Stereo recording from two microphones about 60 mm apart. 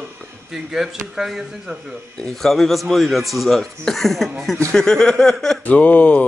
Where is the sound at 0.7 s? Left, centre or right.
Centre.